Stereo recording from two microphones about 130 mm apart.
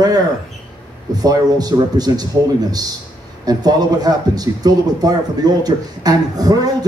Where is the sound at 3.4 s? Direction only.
30° right (ahead or behind).